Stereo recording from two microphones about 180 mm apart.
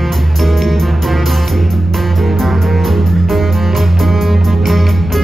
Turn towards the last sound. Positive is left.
turn(degrees=0)  # may be behind; listen again after turning